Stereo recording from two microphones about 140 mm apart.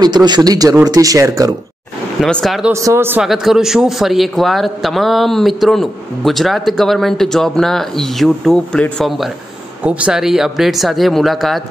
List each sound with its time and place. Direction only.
0.0 s speech: 30° right (ahead or behind)
2.2 s a man's voice: 5° left (ahead or behind)
2.7 s speech: 20° right (ahead or behind)
3.2 s a man's voice: 5° right (ahead or behind)
9.8 s a man's voice: 10° right (ahead or behind)